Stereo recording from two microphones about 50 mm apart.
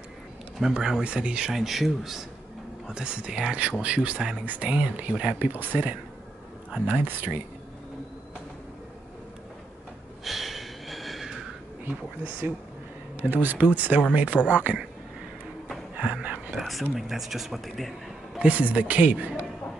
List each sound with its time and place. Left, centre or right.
0.7 s speech: centre
1.5 s speech: centre
2.9 s speech: right
5.4 s speech: right
10.2 s a sound: centre
11.8 s speech: right
16.0 s a sound: right
16.5 s speech: centre
18.5 s speech: right